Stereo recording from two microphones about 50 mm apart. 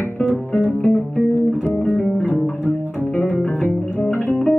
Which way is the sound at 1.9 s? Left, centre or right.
Left.